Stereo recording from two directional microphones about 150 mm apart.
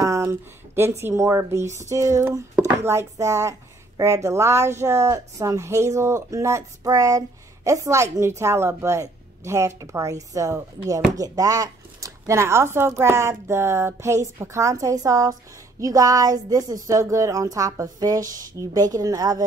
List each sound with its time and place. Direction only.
0.0 s speech: 20° right (ahead or behind)